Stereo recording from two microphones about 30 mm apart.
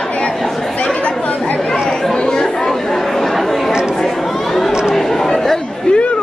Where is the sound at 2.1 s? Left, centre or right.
Left.